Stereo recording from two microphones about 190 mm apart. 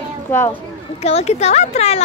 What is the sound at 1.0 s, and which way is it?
Speech, 35° left (ahead or behind).